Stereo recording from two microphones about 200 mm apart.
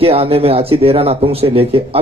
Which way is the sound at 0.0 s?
30° right (ahead or behind).